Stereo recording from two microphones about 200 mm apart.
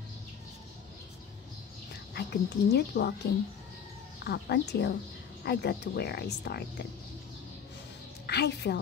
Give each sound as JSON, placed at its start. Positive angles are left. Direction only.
{"t": 2.1, "sound": "speech", "side_deg": 55}
{"t": 4.2, "sound": "speech", "side_deg": 55}
{"t": 8.3, "sound": "a woman's voice", "side_deg": 55}